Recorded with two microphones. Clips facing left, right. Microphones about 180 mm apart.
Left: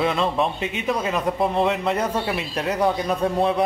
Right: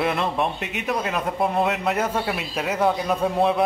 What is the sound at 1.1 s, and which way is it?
A man's voice, 5° right (ahead or behind).